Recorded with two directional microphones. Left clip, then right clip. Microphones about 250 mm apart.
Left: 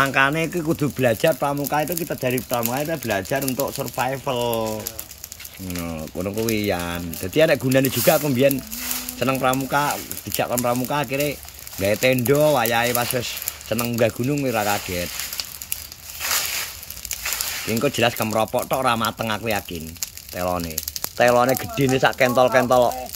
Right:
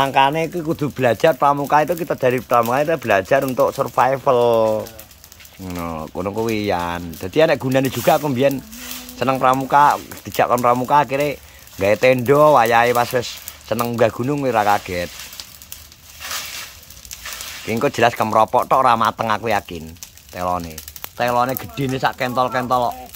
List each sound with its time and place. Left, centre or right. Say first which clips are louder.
0.0 s speech: right 3 dB; centre
3.5 s speech: right 8 dB; right
3.9 s speech: right 7 dB; centre
5.8 s speech: right 4 dB; centre
17.6 s speech: right 4 dB; centre